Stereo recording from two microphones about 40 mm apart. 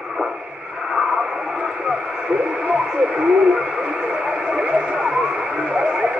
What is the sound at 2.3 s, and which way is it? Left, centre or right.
Radio, right.